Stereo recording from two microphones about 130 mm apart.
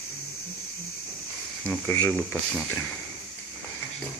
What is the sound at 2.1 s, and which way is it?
Speech, 5° left (ahead or behind).